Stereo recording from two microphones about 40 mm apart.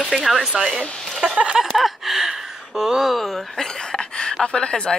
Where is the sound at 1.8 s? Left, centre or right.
Centre.